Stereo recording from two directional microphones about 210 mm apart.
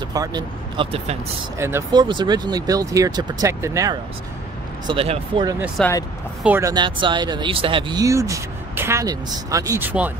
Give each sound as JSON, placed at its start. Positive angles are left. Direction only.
{"t": 0.1, "sound": "speech", "side_deg": -20}
{"t": 1.6, "sound": "speech", "side_deg": -15}
{"t": 4.8, "sound": "speech", "side_deg": -25}
{"t": 5.8, "sound": "speech", "side_deg": 10}
{"t": 6.4, "sound": "speech", "side_deg": -10}
{"t": 6.7, "sound": "speech", "side_deg": -20}